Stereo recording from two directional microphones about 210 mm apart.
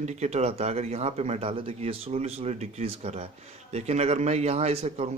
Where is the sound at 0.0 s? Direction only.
35° right (ahead or behind).